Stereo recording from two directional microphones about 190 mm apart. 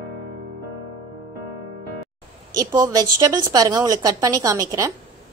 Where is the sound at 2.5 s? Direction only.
20° right (ahead or behind).